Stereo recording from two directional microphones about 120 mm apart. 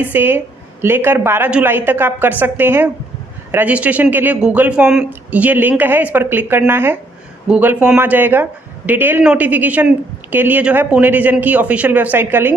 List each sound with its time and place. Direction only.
0.0 s a woman's voice: 15° right (ahead or behind)